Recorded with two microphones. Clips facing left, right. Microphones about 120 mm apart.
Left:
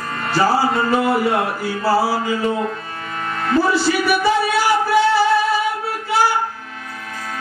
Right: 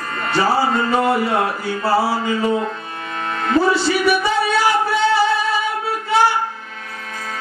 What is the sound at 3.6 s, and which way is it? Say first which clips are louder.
Speech: right 2 dB; 25° right (ahead or behind).